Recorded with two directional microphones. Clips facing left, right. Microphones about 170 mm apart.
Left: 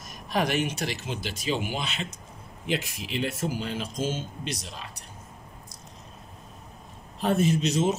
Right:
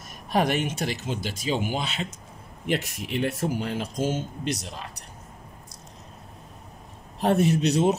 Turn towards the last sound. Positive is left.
turn(degrees=-65)  # may be behind; listen again after turning